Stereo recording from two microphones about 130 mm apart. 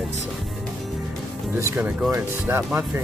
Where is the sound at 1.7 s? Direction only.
15° right (ahead or behind).